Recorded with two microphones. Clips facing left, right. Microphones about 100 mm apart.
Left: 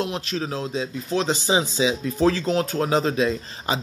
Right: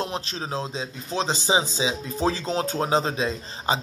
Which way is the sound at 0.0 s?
30° right (ahead or behind).